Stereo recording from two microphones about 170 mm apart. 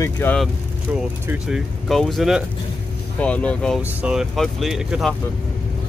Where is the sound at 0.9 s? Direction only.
10° right (ahead or behind).